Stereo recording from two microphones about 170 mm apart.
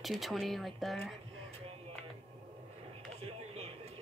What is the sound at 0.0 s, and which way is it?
Speech, centre (ahead or behind).